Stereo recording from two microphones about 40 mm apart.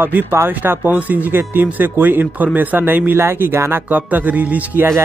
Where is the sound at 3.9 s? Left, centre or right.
Right.